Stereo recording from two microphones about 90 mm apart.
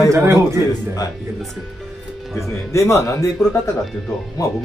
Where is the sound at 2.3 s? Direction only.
30° left (ahead or behind).